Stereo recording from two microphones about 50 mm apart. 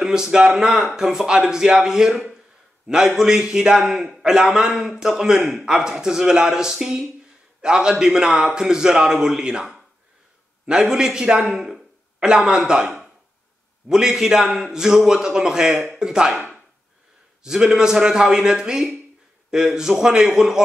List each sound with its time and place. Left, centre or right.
0.0 s a man's voice: centre